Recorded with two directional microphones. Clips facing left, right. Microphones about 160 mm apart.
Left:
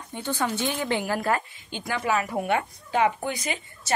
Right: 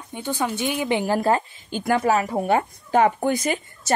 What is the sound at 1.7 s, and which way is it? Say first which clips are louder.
Speech: right 6 dB; 45° right (ahead or behind).